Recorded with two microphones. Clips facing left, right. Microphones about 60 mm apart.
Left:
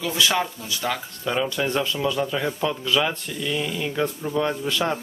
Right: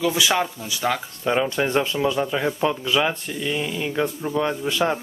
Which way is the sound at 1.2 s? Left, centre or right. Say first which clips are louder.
Right 3 dB; right.